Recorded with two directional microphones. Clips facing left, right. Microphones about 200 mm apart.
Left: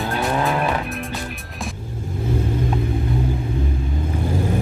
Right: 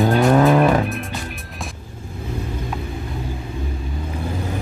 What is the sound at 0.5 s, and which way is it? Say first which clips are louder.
Vehicle: right 7 dB; 40° right (ahead or behind).